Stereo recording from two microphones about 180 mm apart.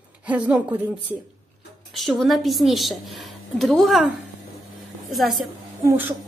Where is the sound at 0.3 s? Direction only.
10° right (ahead or behind).